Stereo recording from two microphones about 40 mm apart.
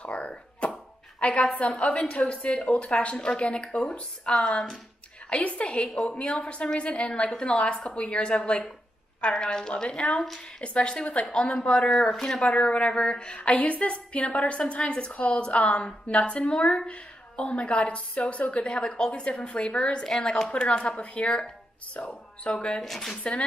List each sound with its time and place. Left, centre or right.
0.0 s a sound: left
1.2 s a woman's voice: left
22.8 s speech: centre
23.1 s a woman's voice: left